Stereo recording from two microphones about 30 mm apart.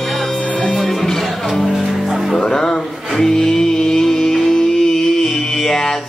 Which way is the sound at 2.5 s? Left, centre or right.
Centre.